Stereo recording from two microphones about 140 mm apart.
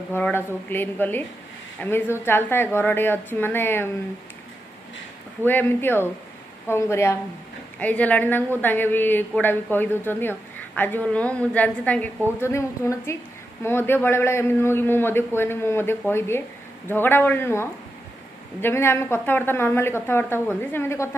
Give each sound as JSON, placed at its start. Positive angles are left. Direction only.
{"t": 0.1, "sound": "a woman's voice", "side_deg": 15}
{"t": 5.4, "sound": "a woman's voice", "side_deg": 15}